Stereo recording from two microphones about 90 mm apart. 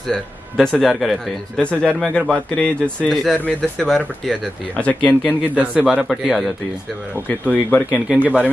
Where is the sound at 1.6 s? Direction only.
10° left (ahead or behind).